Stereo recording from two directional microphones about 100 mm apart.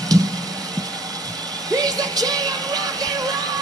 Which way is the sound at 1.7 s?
40° right (ahead or behind).